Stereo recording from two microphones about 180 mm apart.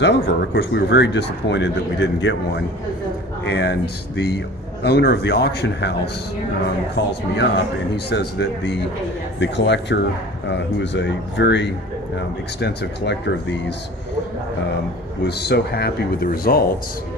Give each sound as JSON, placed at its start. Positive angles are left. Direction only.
{"t": 0.0, "sound": "speech", "side_deg": 70}
{"t": 3.4, "sound": "speech", "side_deg": 65}
{"t": 7.0, "sound": "speech", "side_deg": 75}
{"t": 15.2, "sound": "speech", "side_deg": 65}